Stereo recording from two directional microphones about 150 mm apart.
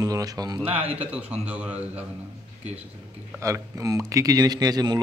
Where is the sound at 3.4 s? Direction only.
20° right (ahead or behind).